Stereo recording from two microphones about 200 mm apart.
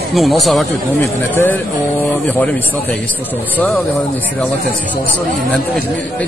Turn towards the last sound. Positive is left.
turn(degrees=5)  # may be behind; listen again after turning